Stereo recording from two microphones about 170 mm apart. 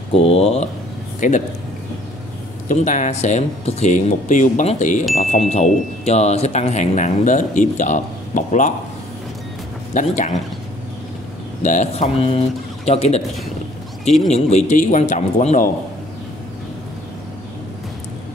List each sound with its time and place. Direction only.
0.1 s speech: 35° left (ahead or behind)
1.2 s speech: 50° left (ahead or behind)
2.7 s speech: 50° left (ahead or behind)
9.9 s speech: 45° left (ahead or behind)
11.6 s speech: 45° left (ahead or behind)
14.3 s speech: 40° left (ahead or behind)